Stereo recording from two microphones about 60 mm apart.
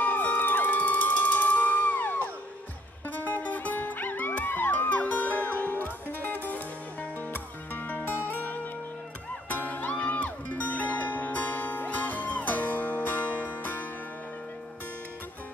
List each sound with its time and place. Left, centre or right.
0.0 s music: left